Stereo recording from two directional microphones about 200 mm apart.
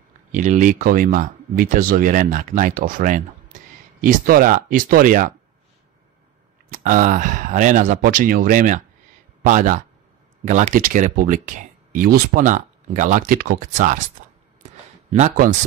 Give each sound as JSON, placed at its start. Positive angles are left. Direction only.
{"t": 0.3, "sound": "speech", "side_deg": -40}
{"t": 6.7, "sound": "speech", "side_deg": -40}
{"t": 15.1, "sound": "speech", "side_deg": -40}